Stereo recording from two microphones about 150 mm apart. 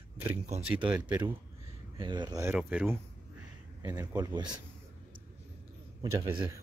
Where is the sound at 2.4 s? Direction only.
10° right (ahead or behind).